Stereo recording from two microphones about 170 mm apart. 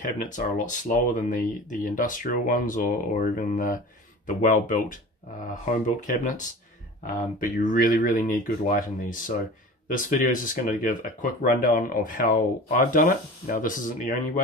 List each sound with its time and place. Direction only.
0.0 s speech: 50° left (ahead or behind)